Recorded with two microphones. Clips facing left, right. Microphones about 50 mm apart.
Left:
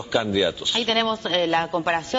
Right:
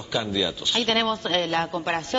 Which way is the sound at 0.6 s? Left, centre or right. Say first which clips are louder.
Left 1 dB; centre.